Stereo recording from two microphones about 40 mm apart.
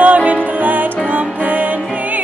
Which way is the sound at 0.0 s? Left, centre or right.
Right.